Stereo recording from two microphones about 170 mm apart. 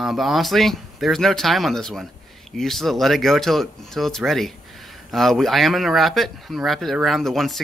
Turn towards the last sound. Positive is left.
turn(degrees=0)  # may be behind; listen again after turning